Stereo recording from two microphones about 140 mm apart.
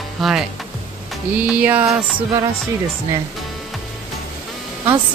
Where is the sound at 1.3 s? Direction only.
10° right (ahead or behind).